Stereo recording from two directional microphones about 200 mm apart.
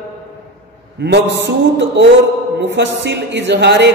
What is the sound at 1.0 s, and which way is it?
Speech, 55° right (ahead or behind).